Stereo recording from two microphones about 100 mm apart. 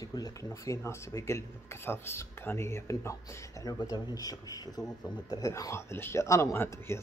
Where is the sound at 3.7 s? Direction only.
45° left (ahead or behind).